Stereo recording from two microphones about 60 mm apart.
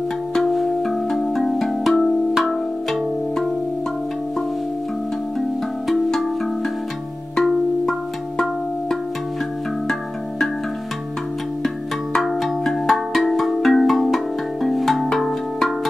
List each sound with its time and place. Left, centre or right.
0.3 s music: centre
5.9 s music: centre
11.6 s music: centre